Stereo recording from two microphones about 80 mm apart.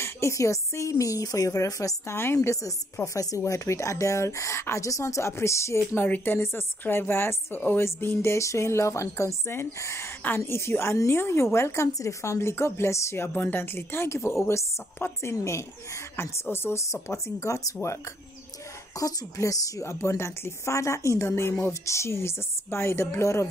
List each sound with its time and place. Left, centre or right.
0.0 s speech: left
2.1 s a woman's voice: left
6.0 s a woman's voice: left
13.3 s a woman's voice: left
18.9 s a woman's voice: left